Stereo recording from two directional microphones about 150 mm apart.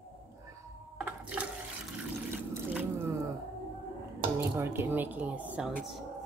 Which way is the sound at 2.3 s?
10° right (ahead or behind).